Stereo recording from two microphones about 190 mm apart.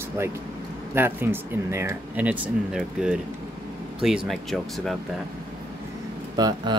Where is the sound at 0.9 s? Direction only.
10° right (ahead or behind).